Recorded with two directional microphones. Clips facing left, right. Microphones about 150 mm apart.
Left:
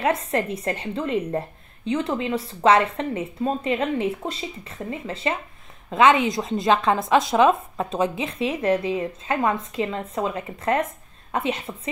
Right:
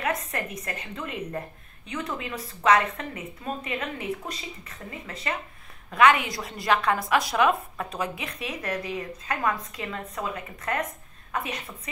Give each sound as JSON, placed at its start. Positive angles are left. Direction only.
{"t": 0.0, "sound": "a woman's voice", "side_deg": 30}